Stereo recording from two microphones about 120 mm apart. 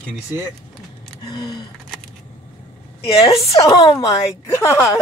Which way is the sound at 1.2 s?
35° left (ahead or behind).